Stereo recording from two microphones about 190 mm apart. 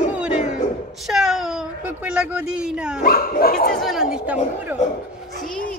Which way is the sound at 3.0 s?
50° left (ahead or behind).